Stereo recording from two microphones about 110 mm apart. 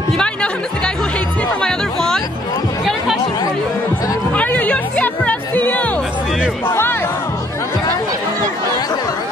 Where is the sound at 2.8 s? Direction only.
Centre (ahead or behind).